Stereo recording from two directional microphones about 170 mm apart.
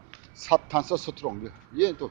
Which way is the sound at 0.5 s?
10° right (ahead or behind).